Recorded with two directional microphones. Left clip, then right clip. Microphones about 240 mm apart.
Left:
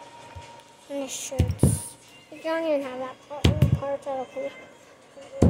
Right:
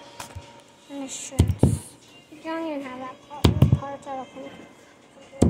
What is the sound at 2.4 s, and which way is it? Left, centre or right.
Speech, left.